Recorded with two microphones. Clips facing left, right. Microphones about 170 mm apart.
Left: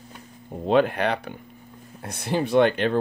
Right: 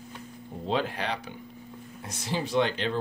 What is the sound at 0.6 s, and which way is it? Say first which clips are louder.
Speech: left 9 dB; 60° left (ahead or behind).